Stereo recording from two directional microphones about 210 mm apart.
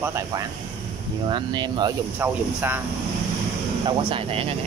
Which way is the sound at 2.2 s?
10° right (ahead or behind).